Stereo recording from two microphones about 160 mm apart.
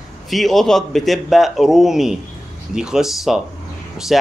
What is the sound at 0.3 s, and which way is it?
Speech, centre (ahead or behind).